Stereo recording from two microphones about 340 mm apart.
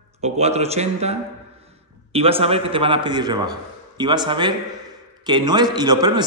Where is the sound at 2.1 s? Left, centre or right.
Centre.